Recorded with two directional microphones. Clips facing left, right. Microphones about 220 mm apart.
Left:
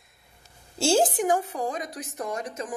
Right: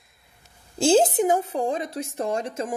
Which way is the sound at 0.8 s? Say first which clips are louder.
Right 4 dB; 20° right (ahead or behind).